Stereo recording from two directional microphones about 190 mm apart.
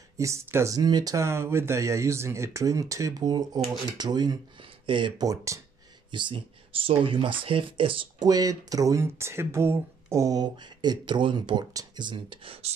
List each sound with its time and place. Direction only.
0.2 s speech: 15° right (ahead or behind)